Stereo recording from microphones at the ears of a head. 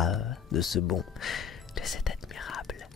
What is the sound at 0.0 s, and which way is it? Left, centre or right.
Music, left.